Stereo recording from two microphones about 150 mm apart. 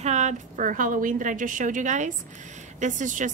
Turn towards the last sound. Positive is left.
turn(degrees=-55)  # may be behind; listen again after turning